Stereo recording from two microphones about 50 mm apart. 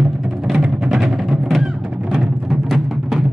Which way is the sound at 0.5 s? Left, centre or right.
Right.